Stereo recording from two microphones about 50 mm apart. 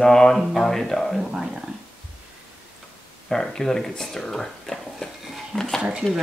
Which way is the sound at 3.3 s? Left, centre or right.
Centre.